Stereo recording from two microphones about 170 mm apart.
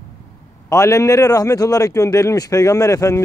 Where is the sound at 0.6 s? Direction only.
20° left (ahead or behind).